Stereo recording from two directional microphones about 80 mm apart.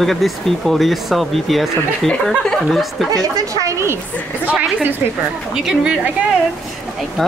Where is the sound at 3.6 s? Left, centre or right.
Right.